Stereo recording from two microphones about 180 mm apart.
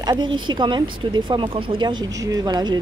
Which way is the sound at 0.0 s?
25° right (ahead or behind).